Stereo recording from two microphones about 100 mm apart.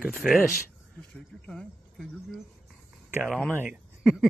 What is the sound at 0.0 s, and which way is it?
Speech, centre (ahead or behind).